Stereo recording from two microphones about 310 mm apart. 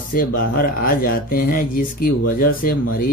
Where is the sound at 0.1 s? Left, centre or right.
Left.